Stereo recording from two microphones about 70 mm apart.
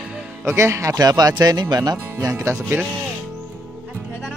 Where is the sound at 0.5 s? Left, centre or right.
Right.